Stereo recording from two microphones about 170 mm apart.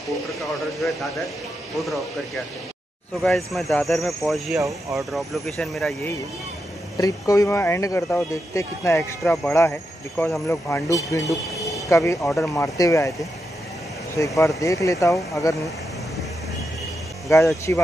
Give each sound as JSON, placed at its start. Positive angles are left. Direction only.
{"t": 3.2, "sound": "speech", "side_deg": 0}
{"t": 7.0, "sound": "speech", "side_deg": 20}
{"t": 14.1, "sound": "speech", "side_deg": 20}
{"t": 17.3, "sound": "speech", "side_deg": 15}